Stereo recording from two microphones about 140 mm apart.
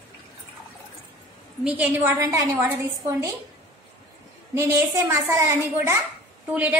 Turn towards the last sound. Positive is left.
turn(degrees=-10)  # may be behind; listen again after turning